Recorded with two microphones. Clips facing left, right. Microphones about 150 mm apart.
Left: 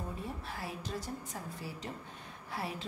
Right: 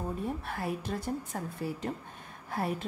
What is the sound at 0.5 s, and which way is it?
A woman's voice, 55° right (ahead or behind).